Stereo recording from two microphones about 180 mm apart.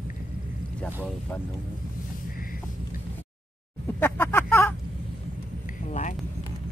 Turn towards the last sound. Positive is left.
turn(degrees=40)  # may be behind; listen again after turning